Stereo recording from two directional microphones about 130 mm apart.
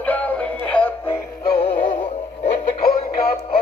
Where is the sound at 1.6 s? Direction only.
45° left (ahead or behind).